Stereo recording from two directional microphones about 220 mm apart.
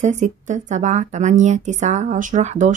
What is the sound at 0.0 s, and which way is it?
Speech, 35° right (ahead or behind).